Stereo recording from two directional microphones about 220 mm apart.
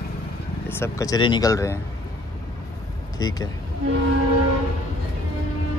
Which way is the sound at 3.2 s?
15° left (ahead or behind).